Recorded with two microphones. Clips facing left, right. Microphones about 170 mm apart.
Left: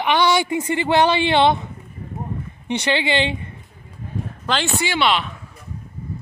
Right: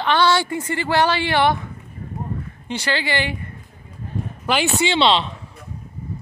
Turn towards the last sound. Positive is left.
turn(degrees=-30)  # may be behind; listen again after turning